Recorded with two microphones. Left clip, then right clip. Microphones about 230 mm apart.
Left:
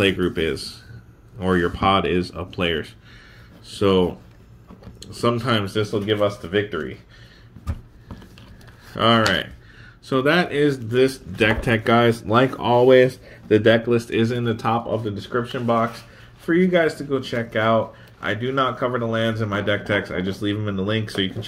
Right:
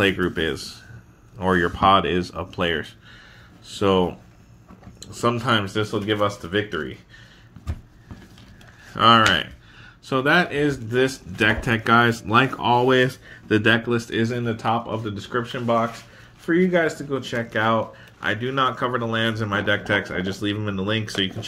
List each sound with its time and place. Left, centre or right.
0.0 s speech: centre
6.0 s speech: right
8.9 s speech: centre